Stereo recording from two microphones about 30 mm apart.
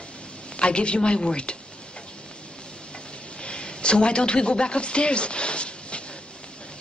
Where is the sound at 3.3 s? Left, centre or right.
Left.